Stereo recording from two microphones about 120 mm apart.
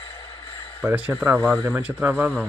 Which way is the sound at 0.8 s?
15° right (ahead or behind).